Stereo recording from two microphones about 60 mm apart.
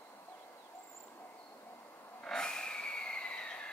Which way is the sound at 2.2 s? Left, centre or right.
Centre.